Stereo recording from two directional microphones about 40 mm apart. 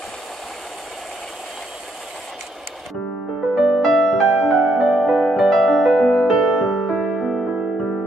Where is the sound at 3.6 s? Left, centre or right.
Centre.